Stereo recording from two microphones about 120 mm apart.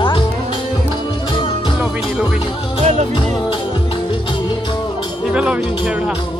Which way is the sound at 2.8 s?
65° right (ahead or behind).